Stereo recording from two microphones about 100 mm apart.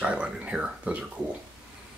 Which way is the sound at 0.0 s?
10° right (ahead or behind).